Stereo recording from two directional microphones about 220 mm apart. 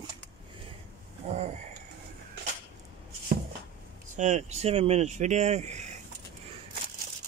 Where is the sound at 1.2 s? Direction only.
30° right (ahead or behind).